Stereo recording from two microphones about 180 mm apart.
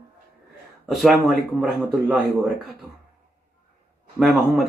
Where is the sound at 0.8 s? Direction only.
Centre (ahead or behind).